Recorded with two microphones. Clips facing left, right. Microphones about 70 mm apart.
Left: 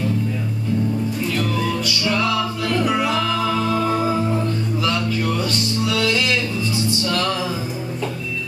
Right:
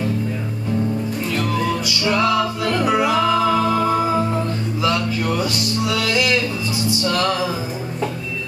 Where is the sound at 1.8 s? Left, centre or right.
Centre.